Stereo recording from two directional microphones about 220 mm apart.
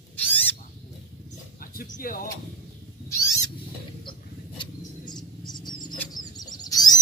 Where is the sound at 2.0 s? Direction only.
40° left (ahead or behind).